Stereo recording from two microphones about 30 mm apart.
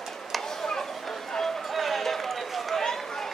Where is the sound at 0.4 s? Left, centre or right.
Centre.